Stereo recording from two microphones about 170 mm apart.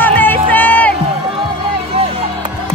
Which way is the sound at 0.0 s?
10° left (ahead or behind).